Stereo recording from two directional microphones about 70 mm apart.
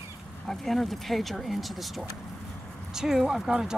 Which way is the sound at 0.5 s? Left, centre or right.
Centre.